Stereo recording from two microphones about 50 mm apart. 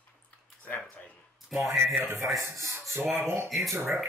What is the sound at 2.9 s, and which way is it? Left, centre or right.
Speech, right.